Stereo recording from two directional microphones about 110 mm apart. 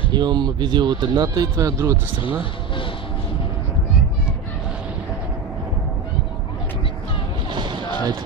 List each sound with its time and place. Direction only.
0.1 s speech: 40° right (ahead or behind)
7.5 s music: 40° right (ahead or behind)